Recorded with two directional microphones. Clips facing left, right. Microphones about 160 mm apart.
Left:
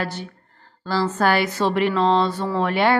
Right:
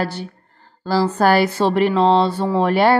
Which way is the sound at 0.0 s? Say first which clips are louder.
Right 4 dB; 35° right (ahead or behind).